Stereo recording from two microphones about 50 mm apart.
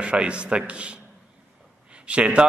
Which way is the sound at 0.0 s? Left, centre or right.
Right.